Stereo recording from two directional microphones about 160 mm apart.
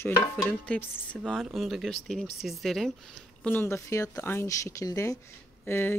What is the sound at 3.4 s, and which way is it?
Speech, 15° left (ahead or behind).